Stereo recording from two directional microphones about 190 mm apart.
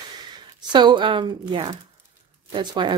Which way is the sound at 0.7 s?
25° right (ahead or behind).